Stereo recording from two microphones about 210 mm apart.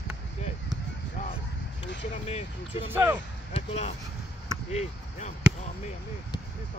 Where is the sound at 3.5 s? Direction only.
30° left (ahead or behind).